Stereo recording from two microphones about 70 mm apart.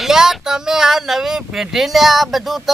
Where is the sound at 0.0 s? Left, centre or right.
Centre.